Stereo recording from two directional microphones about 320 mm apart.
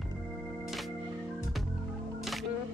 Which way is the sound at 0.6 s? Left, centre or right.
Centre.